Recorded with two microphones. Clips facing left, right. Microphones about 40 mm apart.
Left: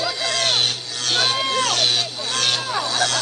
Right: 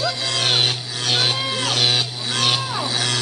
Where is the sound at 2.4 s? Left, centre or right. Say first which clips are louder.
Right 1 dB; centre.